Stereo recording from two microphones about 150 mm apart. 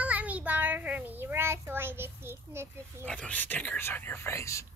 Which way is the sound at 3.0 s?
10° left (ahead or behind).